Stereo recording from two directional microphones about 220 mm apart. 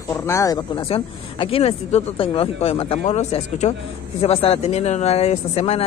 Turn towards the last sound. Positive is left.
turn(degrees=30)  # may be behind; listen again after turning